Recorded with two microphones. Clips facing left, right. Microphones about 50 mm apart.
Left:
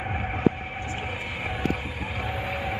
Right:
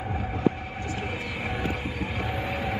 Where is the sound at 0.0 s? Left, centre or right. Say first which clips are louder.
Left 1 dB; left.